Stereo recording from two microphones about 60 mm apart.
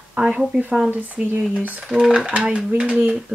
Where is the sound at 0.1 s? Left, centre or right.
Right.